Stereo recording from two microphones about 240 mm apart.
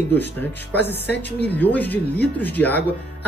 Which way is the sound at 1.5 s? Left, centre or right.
Centre.